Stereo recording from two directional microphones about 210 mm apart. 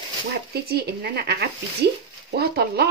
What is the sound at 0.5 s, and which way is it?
Speech, 50° right (ahead or behind).